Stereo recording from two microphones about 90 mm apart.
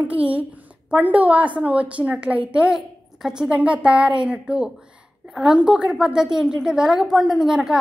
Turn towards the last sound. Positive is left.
turn(degrees=-5)  # may be behind; listen again after turning